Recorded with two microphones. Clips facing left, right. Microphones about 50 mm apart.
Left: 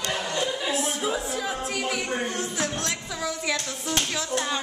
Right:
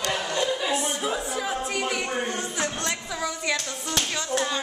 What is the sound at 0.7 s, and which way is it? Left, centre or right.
Speech, centre.